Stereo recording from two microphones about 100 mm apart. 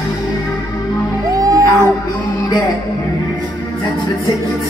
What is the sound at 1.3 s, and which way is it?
Music, 40° right (ahead or behind).